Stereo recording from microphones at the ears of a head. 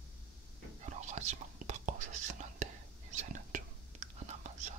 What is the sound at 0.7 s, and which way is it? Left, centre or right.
Whispering, right.